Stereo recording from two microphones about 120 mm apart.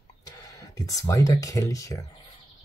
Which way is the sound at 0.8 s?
30° left (ahead or behind).